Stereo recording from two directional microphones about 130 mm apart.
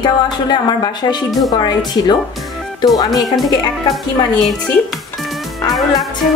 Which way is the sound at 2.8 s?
30° left (ahead or behind).